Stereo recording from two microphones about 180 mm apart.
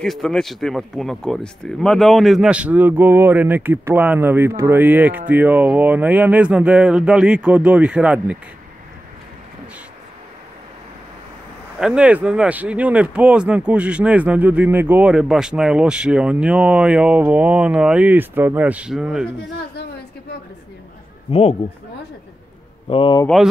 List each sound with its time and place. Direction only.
0.0 s speech: centre (ahead or behind)
11.8 s speech: 5° right (ahead or behind)
21.3 s speech: 35° left (ahead or behind)
22.8 s speech: 30° left (ahead or behind)
23.2 s speech: centre (ahead or behind)